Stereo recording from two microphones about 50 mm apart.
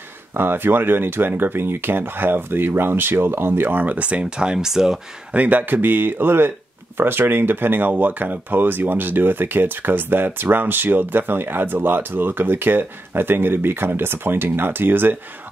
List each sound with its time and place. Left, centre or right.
0.3 s speech: right; by 5.0 s centre
5.3 s speech: right